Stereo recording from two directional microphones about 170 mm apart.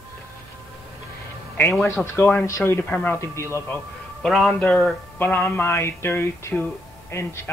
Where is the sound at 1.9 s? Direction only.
10° left (ahead or behind).